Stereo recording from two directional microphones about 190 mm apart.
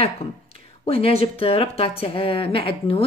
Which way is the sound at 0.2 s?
30° left (ahead or behind).